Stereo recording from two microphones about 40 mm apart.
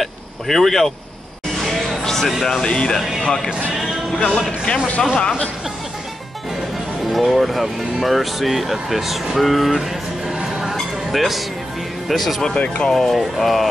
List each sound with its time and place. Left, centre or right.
0.0 s a sound: centre
1.8 s music: centre
2.4 s speech: centre
4.2 s speech: left
7.1 s speech: centre
10.3 s a sound: centre
12.1 s speech: centre
12.5 s speech: left
12.9 s speech: centre